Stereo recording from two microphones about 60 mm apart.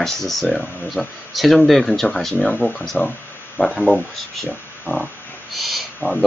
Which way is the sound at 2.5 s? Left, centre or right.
Left.